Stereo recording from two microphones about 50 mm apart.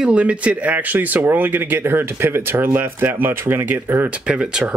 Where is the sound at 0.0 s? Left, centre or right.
Right.